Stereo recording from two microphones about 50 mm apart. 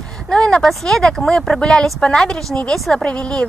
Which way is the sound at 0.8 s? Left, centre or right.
Centre.